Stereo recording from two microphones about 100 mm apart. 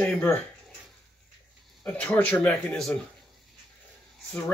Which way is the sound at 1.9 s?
15° left (ahead or behind).